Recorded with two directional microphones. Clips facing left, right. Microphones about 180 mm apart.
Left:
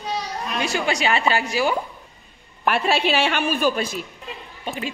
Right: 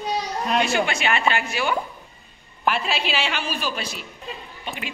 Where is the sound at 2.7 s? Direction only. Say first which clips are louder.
Left 4 dB; 60° left (ahead or behind).